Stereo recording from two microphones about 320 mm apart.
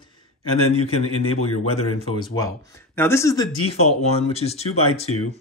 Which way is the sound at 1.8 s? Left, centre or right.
Centre.